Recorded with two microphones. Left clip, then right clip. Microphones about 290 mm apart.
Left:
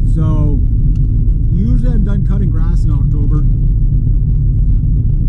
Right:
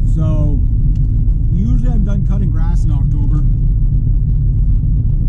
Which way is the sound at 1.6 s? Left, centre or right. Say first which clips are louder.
Left 2 dB; centre.